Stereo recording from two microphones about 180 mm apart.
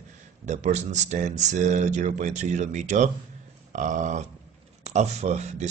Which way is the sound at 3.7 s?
45° right (ahead or behind).